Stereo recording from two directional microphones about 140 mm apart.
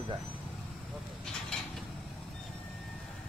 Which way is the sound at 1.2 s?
5° left (ahead or behind).